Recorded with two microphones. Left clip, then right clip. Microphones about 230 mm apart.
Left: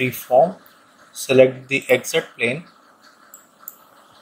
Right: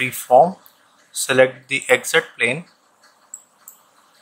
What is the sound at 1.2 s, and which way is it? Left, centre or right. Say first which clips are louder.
Speech: left 1 dB; centre.